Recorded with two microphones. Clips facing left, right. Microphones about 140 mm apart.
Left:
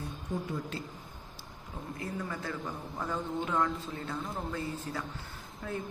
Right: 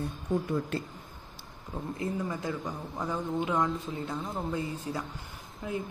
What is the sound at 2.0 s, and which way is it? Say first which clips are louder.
Speech: right 4 dB; 20° right (ahead or behind).